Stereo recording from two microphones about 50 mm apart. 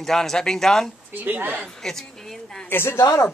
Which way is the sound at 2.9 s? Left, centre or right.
Left.